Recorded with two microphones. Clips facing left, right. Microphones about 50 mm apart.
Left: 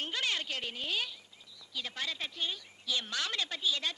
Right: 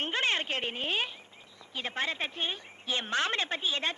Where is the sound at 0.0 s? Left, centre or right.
Right.